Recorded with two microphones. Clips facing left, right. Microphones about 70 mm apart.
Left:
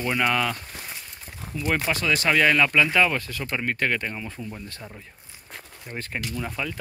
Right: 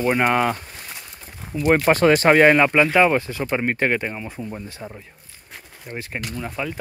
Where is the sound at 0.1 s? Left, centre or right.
Right.